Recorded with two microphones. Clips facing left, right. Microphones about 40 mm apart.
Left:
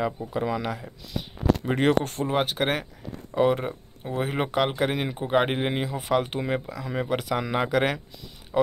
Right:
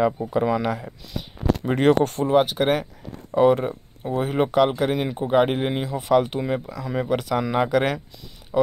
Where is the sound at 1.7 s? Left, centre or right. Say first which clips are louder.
Right 6 dB; centre.